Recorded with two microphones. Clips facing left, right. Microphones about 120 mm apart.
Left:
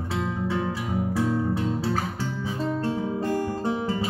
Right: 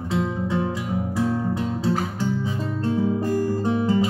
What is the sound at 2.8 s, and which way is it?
Music, 25° left (ahead or behind).